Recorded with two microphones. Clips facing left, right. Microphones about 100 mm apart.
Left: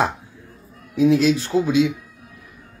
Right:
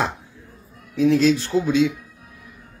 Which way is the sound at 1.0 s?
5° left (ahead or behind).